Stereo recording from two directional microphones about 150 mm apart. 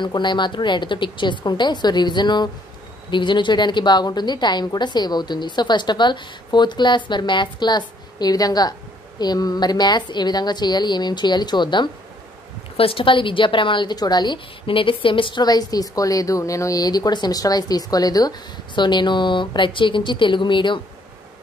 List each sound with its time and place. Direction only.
0.0 s a woman's voice: 30° left (ahead or behind)